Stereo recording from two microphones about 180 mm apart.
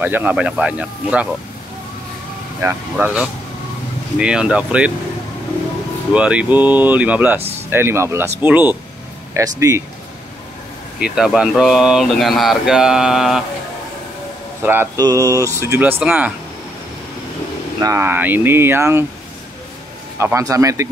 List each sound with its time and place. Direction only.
0.0 s speech: 10° right (ahead or behind)
2.6 s speech: 10° right (ahead or behind)
6.1 s speech: 5° right (ahead or behind)
11.0 s speech: 5° right (ahead or behind)
14.6 s speech: 10° right (ahead or behind)
17.8 s speech: 10° right (ahead or behind)
20.2 s speech: 15° right (ahead or behind)